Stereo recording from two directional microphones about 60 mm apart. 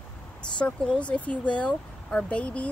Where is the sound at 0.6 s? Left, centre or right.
Centre.